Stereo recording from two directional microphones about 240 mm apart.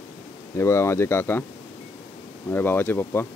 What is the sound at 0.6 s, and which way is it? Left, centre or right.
Speech, centre.